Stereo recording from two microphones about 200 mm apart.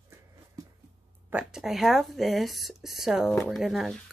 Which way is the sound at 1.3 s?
5° right (ahead or behind).